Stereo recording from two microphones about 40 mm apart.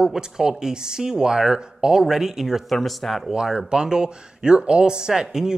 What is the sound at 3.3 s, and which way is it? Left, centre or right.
Speech, centre.